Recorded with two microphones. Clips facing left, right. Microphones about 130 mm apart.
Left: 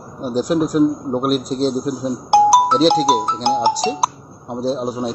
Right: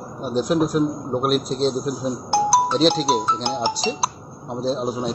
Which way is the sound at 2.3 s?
90° left.